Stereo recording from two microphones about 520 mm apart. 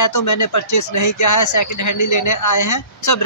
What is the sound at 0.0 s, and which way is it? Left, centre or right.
Speech, left.